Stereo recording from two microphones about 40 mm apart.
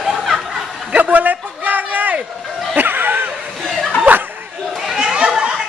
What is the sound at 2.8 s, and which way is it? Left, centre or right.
Laughter, right.